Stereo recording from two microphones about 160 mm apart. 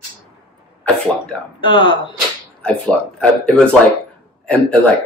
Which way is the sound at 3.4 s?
5° left (ahead or behind).